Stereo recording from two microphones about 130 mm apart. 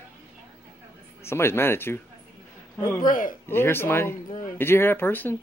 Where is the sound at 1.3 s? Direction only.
20° left (ahead or behind).